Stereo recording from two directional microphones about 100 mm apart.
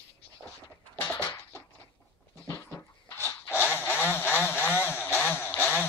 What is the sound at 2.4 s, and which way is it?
Dog, 30° left (ahead or behind).